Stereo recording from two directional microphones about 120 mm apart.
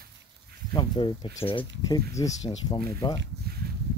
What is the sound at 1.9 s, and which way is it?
Speech, 30° left (ahead or behind).